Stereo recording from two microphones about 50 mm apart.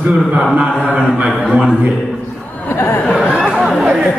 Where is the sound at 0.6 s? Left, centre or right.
Right.